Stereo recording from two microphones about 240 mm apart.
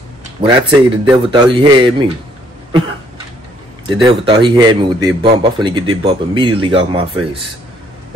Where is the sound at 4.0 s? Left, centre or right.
Right.